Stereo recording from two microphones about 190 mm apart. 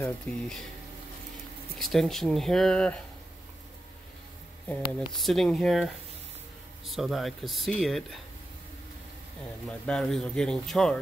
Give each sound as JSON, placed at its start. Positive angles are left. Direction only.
{"t": 0.3, "sound": "speech", "side_deg": 10}
{"t": 1.8, "sound": "speech", "side_deg": 0}
{"t": 4.6, "sound": "speech", "side_deg": 0}
{"t": 9.7, "sound": "speech", "side_deg": 5}